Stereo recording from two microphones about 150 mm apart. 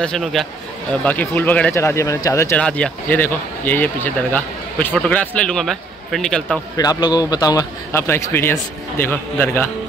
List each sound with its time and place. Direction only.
0.0 s a man's voice: 5° left (ahead or behind); by 2.6 s 20° left (ahead or behind)
2.6 s speech: 10° left (ahead or behind)
6.8 s speech: 25° left (ahead or behind)